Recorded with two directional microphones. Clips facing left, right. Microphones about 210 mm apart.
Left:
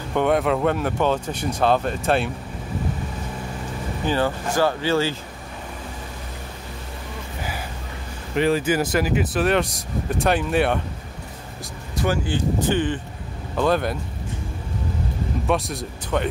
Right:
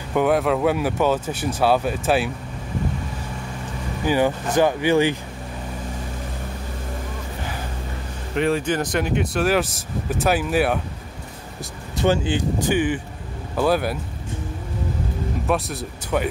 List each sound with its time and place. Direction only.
0.1 s speech: 5° right (ahead or behind)
4.0 s speech: 15° right (ahead or behind)
8.4 s speech: centre (ahead or behind)
12.0 s speech: 20° right (ahead or behind)
15.4 s speech: 5° right (ahead or behind)